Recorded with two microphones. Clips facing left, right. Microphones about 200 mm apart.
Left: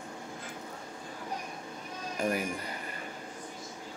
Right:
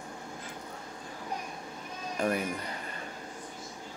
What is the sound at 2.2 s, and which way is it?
Speech, 10° left (ahead or behind).